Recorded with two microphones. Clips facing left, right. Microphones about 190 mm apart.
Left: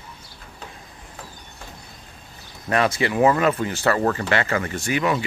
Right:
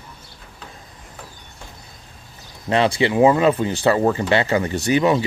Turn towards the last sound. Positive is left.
turn(degrees=-25)  # may be behind; listen again after turning